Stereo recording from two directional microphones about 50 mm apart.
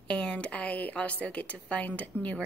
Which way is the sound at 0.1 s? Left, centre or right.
Left.